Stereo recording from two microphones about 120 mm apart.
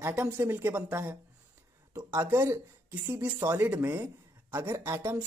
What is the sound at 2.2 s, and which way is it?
A woman's voice, 20° right (ahead or behind).